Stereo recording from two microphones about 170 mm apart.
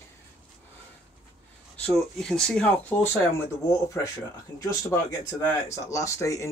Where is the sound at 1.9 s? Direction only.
Centre (ahead or behind).